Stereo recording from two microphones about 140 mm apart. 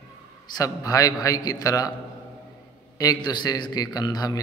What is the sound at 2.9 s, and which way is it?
A man's voice, 30° left (ahead or behind).